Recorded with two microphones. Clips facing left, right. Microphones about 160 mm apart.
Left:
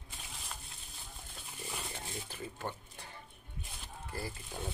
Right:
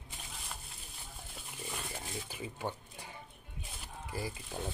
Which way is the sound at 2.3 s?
10° right (ahead or behind).